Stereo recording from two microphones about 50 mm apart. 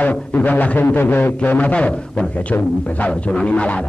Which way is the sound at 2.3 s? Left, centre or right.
Left.